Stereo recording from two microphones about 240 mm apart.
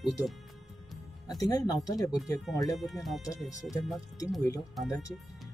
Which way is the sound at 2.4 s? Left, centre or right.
Centre.